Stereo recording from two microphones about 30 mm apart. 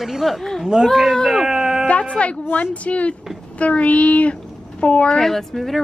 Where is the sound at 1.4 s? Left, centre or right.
Centre.